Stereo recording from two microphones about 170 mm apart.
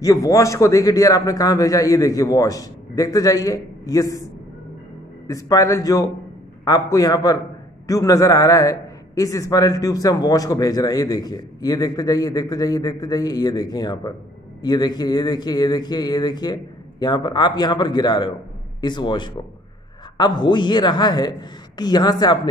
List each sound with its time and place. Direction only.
0.0 s a man's voice: 20° left (ahead or behind)